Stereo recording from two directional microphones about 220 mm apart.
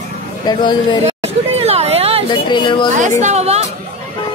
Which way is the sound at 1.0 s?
30° right (ahead or behind).